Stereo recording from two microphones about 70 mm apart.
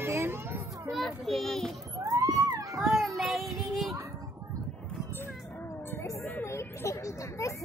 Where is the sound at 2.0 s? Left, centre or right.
Right.